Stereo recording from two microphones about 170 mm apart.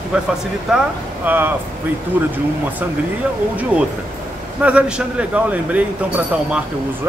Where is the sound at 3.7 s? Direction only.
5° right (ahead or behind).